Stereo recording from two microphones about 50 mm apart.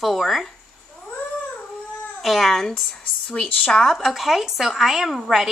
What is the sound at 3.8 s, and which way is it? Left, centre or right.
A woman's voice, centre.